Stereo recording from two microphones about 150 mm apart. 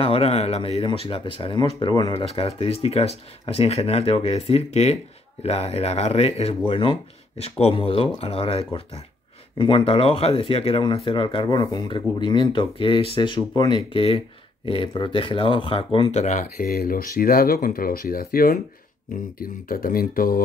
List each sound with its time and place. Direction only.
0.0 s speech: 40° left (ahead or behind)
2.2 s speech: 40° left (ahead or behind)
16.6 s speech: 75° left (ahead or behind)